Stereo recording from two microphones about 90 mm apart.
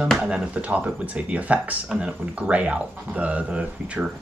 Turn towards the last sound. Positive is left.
turn(degrees=-15)  # may be behind; listen again after turning